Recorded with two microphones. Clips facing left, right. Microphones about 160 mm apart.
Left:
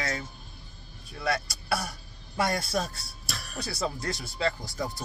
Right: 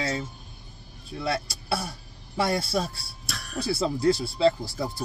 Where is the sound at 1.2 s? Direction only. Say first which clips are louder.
Right 1 dB; 25° right (ahead or behind).